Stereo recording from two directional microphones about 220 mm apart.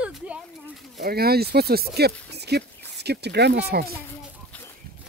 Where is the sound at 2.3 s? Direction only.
50° right (ahead or behind).